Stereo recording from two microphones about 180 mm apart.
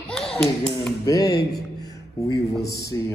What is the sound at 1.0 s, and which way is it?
Speech, 20° left (ahead or behind).